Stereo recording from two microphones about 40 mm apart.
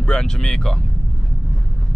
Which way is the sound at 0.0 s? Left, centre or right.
Centre.